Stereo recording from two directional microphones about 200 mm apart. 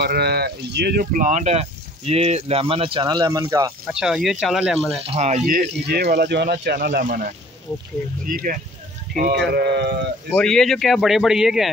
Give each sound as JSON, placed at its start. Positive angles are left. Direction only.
{"t": 0.0, "sound": "speech", "side_deg": -50}
{"t": 3.8, "sound": "speech", "side_deg": -5}
{"t": 5.0, "sound": "speech", "side_deg": -30}
{"t": 5.5, "sound": "speech", "side_deg": -55}
{"t": 10.3, "sound": "speech", "side_deg": 5}